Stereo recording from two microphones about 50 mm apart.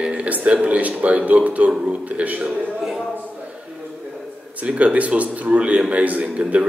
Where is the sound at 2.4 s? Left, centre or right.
Centre.